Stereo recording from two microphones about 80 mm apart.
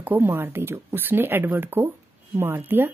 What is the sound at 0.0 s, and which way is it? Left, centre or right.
Speech, right.